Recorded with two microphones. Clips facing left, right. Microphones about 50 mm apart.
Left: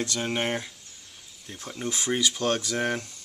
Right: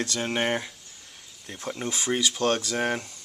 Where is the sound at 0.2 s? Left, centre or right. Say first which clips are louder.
Right 3 dB; centre.